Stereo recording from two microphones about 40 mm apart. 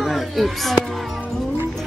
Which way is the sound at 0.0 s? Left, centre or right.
Centre.